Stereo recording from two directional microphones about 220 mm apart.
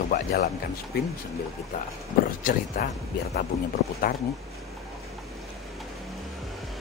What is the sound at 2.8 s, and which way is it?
Speech, 40° left (ahead or behind).